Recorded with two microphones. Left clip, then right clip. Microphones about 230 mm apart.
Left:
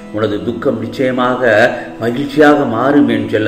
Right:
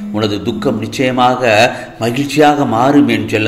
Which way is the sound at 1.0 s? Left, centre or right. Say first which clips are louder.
Right 2 dB; right.